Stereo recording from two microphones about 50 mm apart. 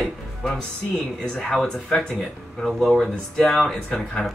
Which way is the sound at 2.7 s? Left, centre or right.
Centre.